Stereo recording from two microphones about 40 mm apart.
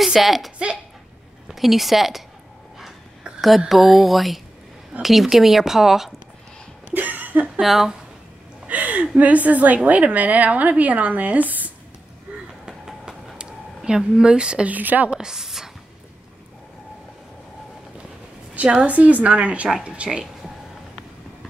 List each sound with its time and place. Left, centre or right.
0.0 s speech: centre
1.5 s a woman's voice: centre
3.3 s a woman's voice: centre
6.9 s cough: right
7.6 s a woman's voice: centre
8.6 s a woman's voice: right
12.6 s train: centre
13.4 s a sound: centre
14.7 s a woman's voice: right
15.1 s a woman's voice: centre
18.5 s a sound: right
18.9 s a woman's voice: right